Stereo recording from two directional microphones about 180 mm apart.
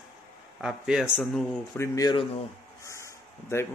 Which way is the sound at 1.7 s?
15° left (ahead or behind).